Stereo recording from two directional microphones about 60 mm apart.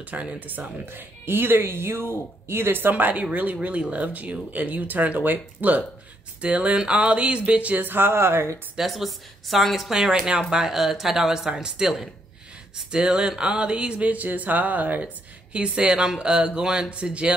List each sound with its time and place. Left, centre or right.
0.0 s speech: right
8.7 s speech: centre